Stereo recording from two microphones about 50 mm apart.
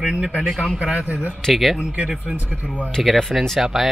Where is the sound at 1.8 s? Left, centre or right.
Centre.